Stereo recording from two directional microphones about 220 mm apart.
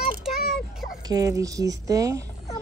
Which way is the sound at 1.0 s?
15° right (ahead or behind).